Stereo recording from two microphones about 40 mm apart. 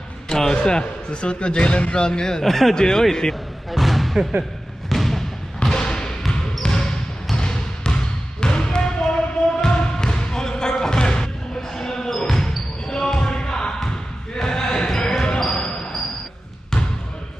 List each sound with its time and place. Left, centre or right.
0.3 s speech: centre
3.7 s music: centre
4.8 s thump: centre
5.6 s basketball bounce: centre